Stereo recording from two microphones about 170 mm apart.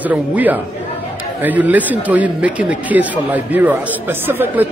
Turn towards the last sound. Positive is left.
turn(degrees=-10)  # may be behind; listen again after turning